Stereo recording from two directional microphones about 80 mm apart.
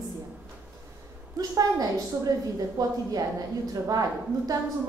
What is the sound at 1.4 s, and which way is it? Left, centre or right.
A woman's voice, right.